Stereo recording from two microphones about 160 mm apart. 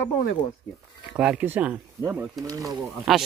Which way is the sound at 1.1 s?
10° right (ahead or behind).